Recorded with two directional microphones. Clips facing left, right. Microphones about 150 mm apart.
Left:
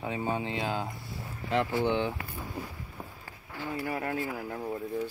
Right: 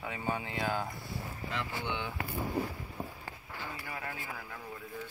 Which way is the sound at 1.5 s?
50° left (ahead or behind).